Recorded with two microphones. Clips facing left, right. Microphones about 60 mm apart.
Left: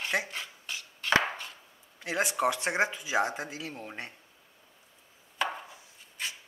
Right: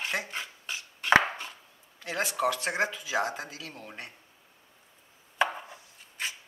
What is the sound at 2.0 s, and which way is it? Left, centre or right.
Speech, centre.